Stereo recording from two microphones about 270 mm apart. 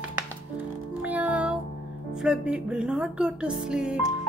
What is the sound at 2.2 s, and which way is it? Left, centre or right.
Speech, centre.